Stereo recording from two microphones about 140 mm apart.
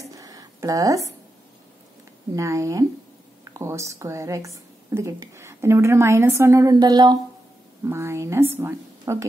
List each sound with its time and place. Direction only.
0.1 s a sound: 25° right (ahead or behind)
2.3 s a woman's voice: 20° right (ahead or behind)
7.8 s a woman's voice: 20° right (ahead or behind)